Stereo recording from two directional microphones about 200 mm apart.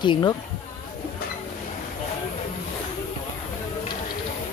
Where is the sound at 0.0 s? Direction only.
20° left (ahead or behind).